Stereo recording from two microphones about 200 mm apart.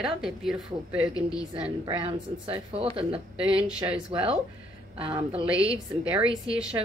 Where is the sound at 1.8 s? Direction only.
25° right (ahead or behind).